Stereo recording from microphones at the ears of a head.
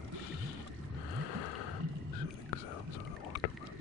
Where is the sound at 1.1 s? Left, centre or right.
Left.